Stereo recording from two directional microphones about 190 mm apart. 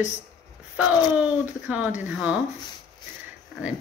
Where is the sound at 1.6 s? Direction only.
5° right (ahead or behind).